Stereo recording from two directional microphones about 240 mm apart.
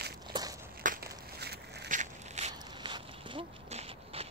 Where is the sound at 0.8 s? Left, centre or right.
Right.